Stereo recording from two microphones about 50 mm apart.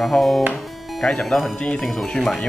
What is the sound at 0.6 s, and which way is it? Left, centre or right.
Music, centre.